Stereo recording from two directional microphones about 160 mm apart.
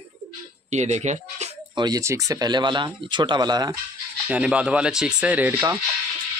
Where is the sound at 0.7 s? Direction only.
45° right (ahead or behind).